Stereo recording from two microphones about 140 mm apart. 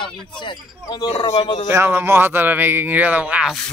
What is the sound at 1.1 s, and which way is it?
Speech, 50° left (ahead or behind).